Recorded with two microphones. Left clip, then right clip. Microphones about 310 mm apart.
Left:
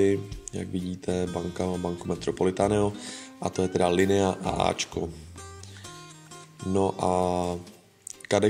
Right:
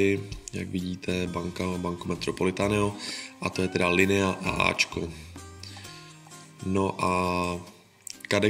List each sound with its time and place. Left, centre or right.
0.0 s speech: left
6.7 s speech: left
8.1 s music: left